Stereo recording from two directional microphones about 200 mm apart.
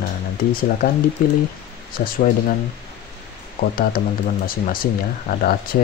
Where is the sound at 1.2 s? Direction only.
50° left (ahead or behind).